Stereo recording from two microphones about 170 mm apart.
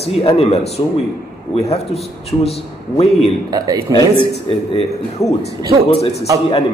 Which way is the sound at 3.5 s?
20° right (ahead or behind).